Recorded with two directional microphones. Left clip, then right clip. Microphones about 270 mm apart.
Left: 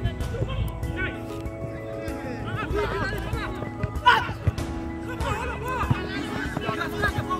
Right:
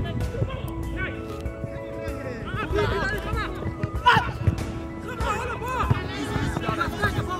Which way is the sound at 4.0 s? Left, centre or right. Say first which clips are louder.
Even; centre.